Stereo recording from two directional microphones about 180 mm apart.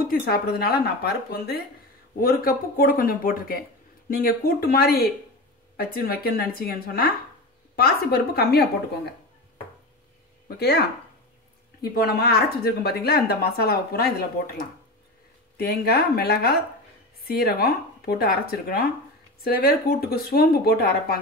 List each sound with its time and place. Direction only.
0.0 s speech: 55° left (ahead or behind)
11.8 s speech: 60° left (ahead or behind)
15.5 s speech: 60° left (ahead or behind)